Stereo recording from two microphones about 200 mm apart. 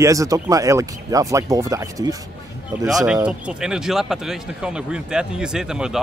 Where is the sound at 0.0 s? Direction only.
15° right (ahead or behind).